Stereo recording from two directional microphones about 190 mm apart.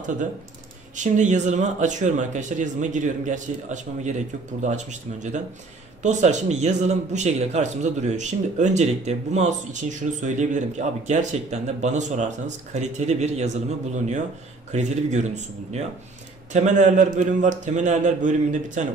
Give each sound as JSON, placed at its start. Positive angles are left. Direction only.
{"t": 0.9, "sound": "a man's voice", "side_deg": -40}